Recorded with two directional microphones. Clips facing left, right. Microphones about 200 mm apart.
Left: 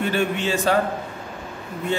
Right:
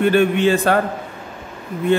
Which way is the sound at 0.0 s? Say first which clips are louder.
Right 8 dB; 60° right (ahead or behind).